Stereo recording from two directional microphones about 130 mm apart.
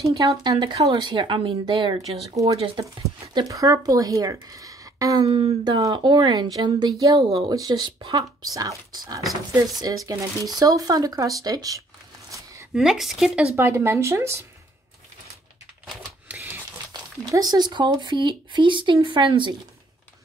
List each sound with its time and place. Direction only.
0.0 s speech: 25° right (ahead or behind); by 2.8 s 45° right (ahead or behind)
3.3 s speech: 25° right (ahead or behind)
12.7 s speech: centre (ahead or behind)
13.6 s speech: 20° right (ahead or behind)
15.9 s typewriter: 10° right (ahead or behind)
16.9 s speech: 30° right (ahead or behind)